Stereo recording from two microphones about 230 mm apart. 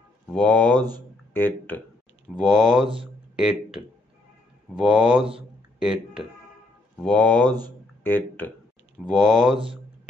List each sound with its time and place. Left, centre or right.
0.3 s speech: centre
0.7 s speech: centre
1.3 s speech: centre
7.4 s speech: centre
8.0 s speech: centre